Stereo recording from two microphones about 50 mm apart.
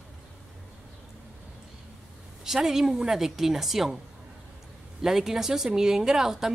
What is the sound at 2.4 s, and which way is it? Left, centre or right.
Speech, centre.